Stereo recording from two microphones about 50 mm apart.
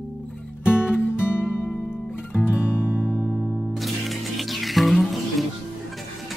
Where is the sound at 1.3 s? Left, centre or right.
Left.